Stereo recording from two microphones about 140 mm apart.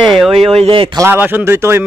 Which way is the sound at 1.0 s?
15° right (ahead or behind).